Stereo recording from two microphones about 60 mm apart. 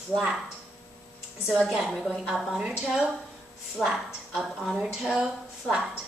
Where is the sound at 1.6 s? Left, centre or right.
Centre.